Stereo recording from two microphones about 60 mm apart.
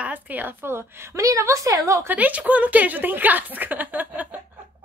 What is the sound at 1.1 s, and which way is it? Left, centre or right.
Speech, right.